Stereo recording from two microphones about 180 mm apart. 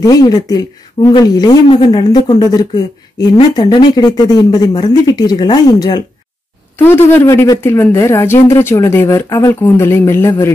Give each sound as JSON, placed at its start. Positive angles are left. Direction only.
{"t": 0.0, "sound": "speech", "side_deg": 20}